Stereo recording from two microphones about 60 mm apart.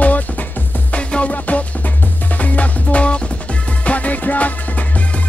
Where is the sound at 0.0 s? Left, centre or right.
Left.